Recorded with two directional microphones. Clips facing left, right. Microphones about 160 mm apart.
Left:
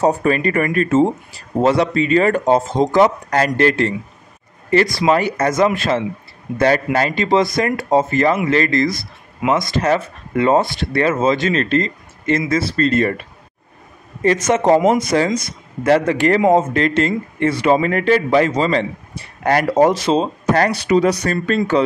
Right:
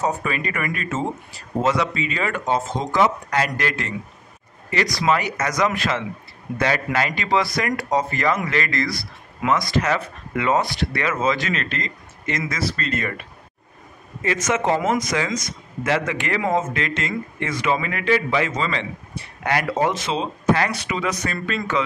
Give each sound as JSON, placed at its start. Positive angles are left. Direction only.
{"t": 0.0, "sound": "speech", "side_deg": 40}
{"t": 14.2, "sound": "speech", "side_deg": 35}